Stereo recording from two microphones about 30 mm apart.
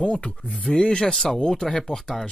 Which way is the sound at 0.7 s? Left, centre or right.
Left.